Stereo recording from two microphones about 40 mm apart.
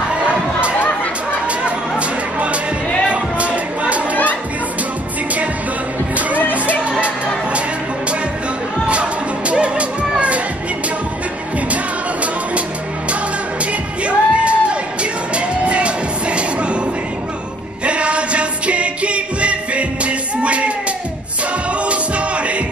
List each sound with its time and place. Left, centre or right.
0.7 s chatter: left
2.0 s a sound: right
3.1 s music: right
6.5 s music: right
9.5 s music: right
14.0 s music: right
17.8 s music: right
21.8 s music: right